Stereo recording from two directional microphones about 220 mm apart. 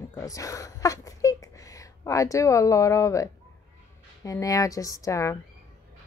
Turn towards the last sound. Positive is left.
turn(degrees=15)  # may be behind; listen again after turning